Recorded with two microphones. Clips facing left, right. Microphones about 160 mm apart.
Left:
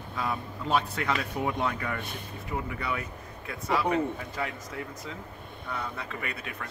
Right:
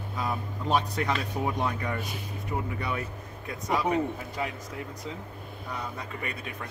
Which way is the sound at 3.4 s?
20° right (ahead or behind).